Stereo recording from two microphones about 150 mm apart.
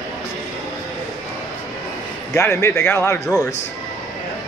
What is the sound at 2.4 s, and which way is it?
Speech, 20° left (ahead or behind).